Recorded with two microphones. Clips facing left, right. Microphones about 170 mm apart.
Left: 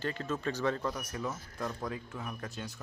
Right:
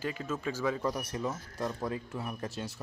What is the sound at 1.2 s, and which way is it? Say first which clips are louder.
Speech: right 3 dB; 15° right (ahead or behind).